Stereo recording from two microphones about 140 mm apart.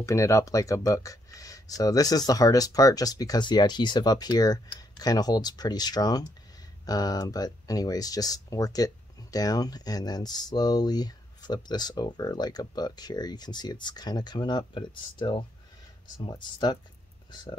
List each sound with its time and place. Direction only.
0.0 s speech: 20° left (ahead or behind)